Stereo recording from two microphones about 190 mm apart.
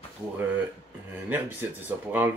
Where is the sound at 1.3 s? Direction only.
10° right (ahead or behind).